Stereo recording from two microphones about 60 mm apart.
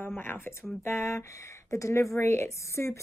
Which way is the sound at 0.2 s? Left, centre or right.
Left.